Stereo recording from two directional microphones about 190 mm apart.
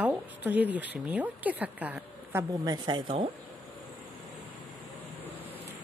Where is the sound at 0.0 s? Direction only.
10° right (ahead or behind).